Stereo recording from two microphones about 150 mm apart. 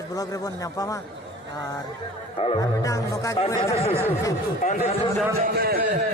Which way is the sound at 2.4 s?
25° left (ahead or behind).